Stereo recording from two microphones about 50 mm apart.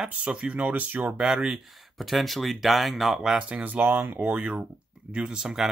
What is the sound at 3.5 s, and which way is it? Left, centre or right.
Speech, right.